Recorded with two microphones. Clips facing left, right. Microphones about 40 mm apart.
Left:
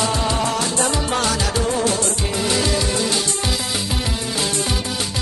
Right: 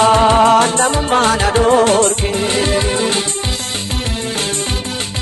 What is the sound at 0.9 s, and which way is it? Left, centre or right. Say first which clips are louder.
Music: right 7 dB; right.